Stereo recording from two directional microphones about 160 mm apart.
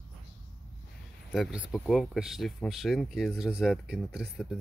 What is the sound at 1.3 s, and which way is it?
Speech, 5° right (ahead or behind).